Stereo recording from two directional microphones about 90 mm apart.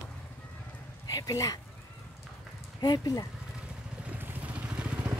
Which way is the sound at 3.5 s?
15° right (ahead or behind).